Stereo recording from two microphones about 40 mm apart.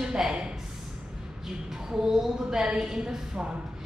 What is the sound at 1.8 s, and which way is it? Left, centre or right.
A man's voice, centre.